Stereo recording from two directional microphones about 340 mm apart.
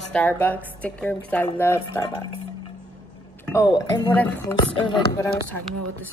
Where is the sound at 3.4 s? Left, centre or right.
Centre.